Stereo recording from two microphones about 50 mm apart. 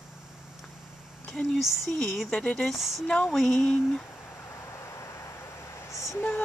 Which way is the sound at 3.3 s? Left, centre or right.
Centre.